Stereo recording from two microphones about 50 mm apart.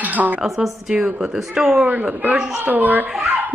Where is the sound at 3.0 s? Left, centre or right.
Centre.